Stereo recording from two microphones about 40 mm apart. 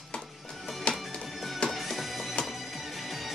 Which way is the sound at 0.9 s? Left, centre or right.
Left.